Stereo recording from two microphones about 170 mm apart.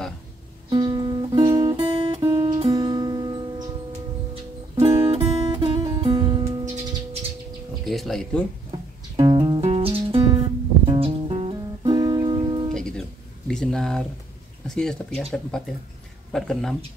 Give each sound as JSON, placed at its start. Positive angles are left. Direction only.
{"t": 0.7, "sound": "music", "side_deg": -25}
{"t": 5.0, "sound": "guitar", "side_deg": -35}
{"t": 6.6, "sound": "music", "side_deg": -45}
{"t": 7.8, "sound": "music", "side_deg": 0}
{"t": 9.1, "sound": "music", "side_deg": -30}
{"t": 12.7, "sound": "music", "side_deg": 5}
{"t": 13.5, "sound": "a sound", "side_deg": 5}
{"t": 14.8, "sound": "speech", "side_deg": 5}